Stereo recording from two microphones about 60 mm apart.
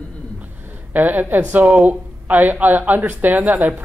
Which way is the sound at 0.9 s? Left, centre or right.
Right.